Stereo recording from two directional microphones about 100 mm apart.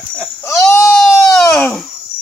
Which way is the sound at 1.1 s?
30° left (ahead or behind).